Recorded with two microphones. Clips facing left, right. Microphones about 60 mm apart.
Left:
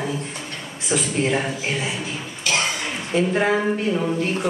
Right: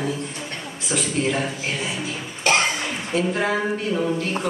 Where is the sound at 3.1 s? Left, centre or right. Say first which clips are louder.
Left 3 dB; centre.